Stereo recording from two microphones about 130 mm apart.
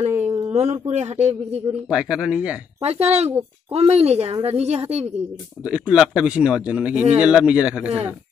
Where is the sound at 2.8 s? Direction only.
55° right (ahead or behind).